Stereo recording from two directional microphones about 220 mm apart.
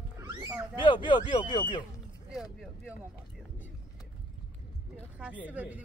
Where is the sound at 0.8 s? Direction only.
20° left (ahead or behind).